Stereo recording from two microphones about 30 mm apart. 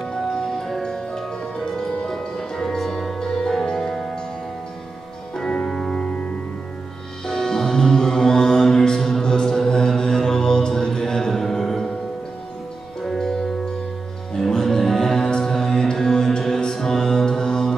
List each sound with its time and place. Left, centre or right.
0.8 s music: centre
5.3 s music: centre
5.7 s music: centre
7.2 s music: left
9.2 s mantra: left
14.3 s music: centre